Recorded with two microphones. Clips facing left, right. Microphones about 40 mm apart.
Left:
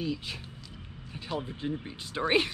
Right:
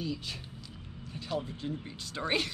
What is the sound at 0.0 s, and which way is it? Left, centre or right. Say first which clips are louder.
Speech: left 3 dB; centre.